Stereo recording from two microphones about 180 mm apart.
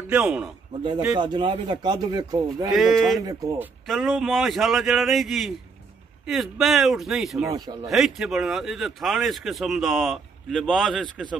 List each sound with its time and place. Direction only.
0.1 s speech: 5° right (ahead or behind)
1.1 s speech: 25° right (ahead or behind)
2.7 s speech: centre (ahead or behind)
3.2 s speech: 20° right (ahead or behind)
3.8 s speech: centre (ahead or behind)
7.4 s speech: 20° right (ahead or behind)
7.9 s speech: centre (ahead or behind)